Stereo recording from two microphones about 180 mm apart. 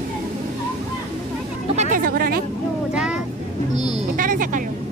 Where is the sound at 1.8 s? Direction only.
50° right (ahead or behind).